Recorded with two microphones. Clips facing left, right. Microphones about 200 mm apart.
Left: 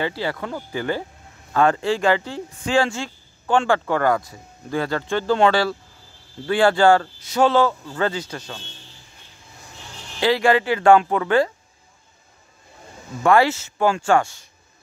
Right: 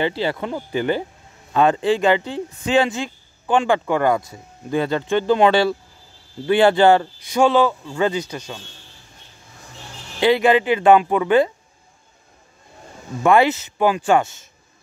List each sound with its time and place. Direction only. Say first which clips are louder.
0.0 s a man's voice: right 3 dB; 25° right (ahead or behind)
10.2 s a man's voice: right 3 dB; 20° right (ahead or behind)
13.2 s a man's voice: right 1 dB; 20° right (ahead or behind)